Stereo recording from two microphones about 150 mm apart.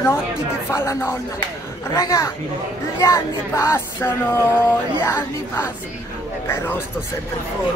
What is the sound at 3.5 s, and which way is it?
Music, 15° left (ahead or behind).